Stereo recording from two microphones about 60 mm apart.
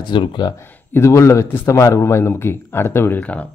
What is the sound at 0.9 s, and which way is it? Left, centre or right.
Speech, left.